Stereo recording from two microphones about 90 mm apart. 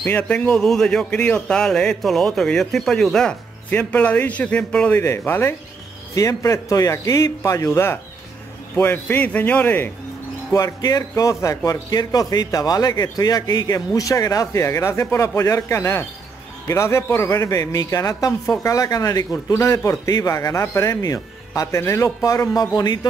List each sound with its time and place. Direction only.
0.0 s speech: 20° left (ahead or behind)
4.9 s a man's voice: 25° left (ahead or behind)
6.1 s a man's voice: 40° left (ahead or behind); by 9.8 s 20° left (ahead or behind)
10.5 s a man's voice: 45° left (ahead or behind)